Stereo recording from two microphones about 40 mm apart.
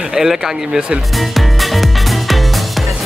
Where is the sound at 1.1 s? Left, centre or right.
Centre.